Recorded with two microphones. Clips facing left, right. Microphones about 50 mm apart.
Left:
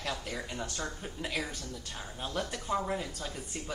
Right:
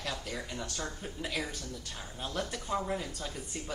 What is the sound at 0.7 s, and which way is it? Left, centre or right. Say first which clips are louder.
Speech: left 1 dB; centre.